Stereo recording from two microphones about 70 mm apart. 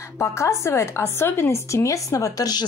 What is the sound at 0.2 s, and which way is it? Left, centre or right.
A woman's voice, left.